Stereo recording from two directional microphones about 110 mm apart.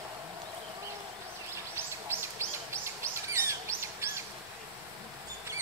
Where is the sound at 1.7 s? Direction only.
20° right (ahead or behind).